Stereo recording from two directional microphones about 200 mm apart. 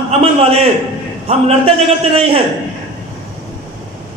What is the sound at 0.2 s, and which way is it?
A man's voice, 30° right (ahead or behind).